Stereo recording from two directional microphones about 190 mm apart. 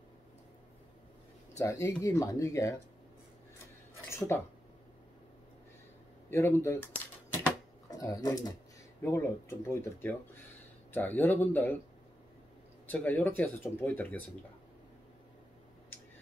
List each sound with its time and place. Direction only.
1.6 s speech: 15° left (ahead or behind)
4.3 s speech: 10° left (ahead or behind)
6.3 s speech: 15° left (ahead or behind)
7.9 s speech: 20° left (ahead or behind)
12.9 s speech: 10° left (ahead or behind)